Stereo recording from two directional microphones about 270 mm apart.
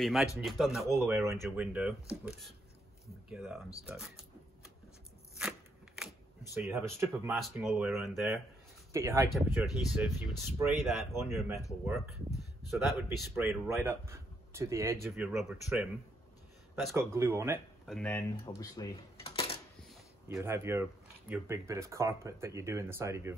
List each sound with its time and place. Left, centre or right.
0.0 s speech: centre
6.5 s speech: centre
8.9 s speech: centre
17.8 s speech: centre; by 19.6 s left
20.2 s speech: centre